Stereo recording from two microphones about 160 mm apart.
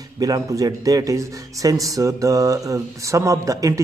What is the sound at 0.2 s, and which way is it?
Speech, 20° right (ahead or behind).